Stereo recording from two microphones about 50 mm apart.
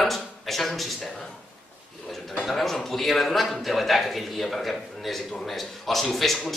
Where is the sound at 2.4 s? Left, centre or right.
Centre.